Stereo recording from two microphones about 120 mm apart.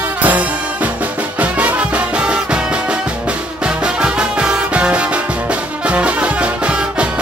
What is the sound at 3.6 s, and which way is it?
Music, 5° right (ahead or behind).